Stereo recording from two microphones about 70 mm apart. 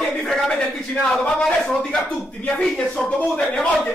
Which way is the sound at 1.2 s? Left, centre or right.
Centre.